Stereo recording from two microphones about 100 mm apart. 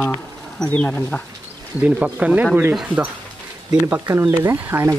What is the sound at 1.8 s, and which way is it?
Speech, 15° right (ahead or behind).